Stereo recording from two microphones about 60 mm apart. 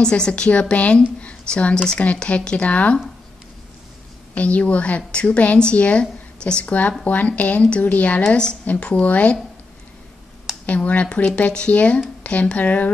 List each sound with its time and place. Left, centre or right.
0.0 s a woman's voice: centre
1.2 s a sound: left
1.9 s a woman's voice: centre
4.4 s a woman's voice: left
10.7 s a woman's voice: left